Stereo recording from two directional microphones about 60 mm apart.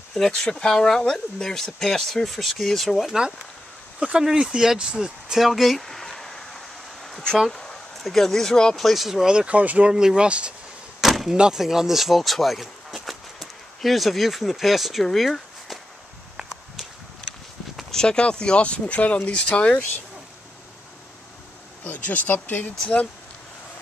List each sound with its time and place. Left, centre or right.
0.1 s speech: centre
4.2 s a sound: centre
7.5 s speech: centre
11.0 s a sound: centre
11.3 s speech: centre
17.9 s speech: centre
21.8 s speech: left